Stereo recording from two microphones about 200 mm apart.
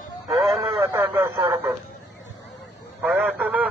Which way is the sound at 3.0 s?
10° right (ahead or behind).